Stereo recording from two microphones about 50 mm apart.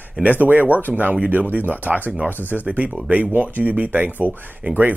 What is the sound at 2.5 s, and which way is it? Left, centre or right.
Speech, right.